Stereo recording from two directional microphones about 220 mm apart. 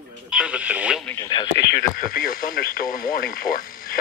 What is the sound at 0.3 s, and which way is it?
Speech, 5° right (ahead or behind).